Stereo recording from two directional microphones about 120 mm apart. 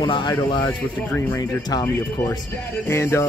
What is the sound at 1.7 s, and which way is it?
Speech, 35° left (ahead or behind).